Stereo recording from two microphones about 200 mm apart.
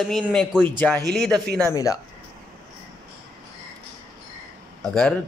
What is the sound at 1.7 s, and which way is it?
Speech, 15° left (ahead or behind).